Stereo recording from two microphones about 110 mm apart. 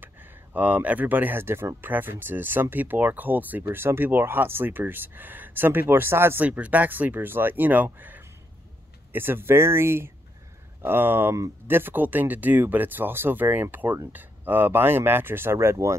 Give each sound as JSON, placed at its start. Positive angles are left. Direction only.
{"t": 0.0, "sound": "speech", "side_deg": -15}